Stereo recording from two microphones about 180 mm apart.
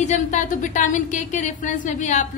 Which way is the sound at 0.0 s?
40° left (ahead or behind).